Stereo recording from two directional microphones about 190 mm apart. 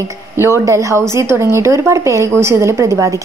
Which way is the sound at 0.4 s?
15° right (ahead or behind).